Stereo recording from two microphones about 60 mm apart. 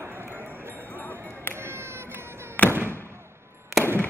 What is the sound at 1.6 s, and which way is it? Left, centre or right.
Cat, right.